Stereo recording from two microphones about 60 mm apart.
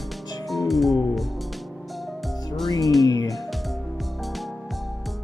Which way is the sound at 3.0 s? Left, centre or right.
Left.